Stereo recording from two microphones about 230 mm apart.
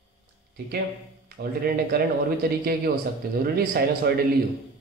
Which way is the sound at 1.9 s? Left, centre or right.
Right.